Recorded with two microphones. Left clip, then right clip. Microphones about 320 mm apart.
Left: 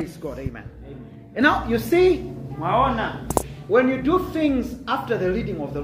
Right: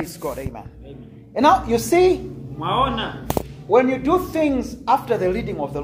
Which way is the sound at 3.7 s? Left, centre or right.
Centre.